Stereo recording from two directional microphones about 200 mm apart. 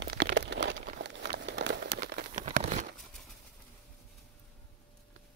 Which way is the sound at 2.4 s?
35° right (ahead or behind).